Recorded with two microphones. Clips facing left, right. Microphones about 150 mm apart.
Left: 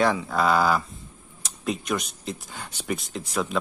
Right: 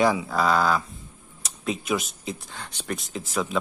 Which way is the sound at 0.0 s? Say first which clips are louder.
Even; 10° right (ahead or behind).